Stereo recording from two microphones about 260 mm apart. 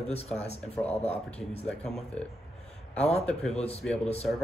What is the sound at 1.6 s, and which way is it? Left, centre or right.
Speech, centre.